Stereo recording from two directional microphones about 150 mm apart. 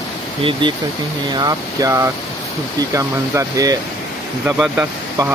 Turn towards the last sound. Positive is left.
turn(degrees=-10)  # may be behind; listen again after turning